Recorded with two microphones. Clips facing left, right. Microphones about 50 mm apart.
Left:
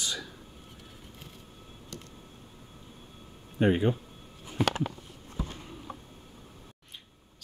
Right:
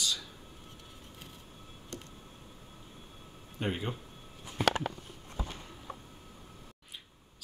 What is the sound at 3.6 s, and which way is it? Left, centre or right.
Speech, left.